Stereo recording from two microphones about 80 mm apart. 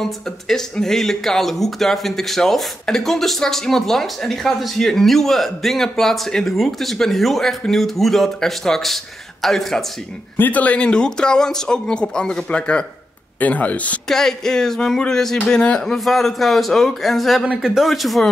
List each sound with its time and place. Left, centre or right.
0.0 s speech: centre
10.3 s speech: left
14.0 s speech: centre